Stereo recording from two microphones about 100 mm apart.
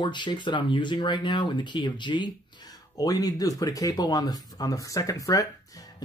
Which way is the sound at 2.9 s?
35° left (ahead or behind).